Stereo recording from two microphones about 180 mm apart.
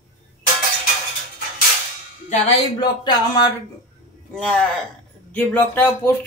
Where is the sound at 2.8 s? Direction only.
25° left (ahead or behind).